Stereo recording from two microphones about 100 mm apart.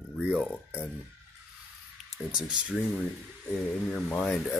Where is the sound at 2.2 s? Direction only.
10° right (ahead or behind).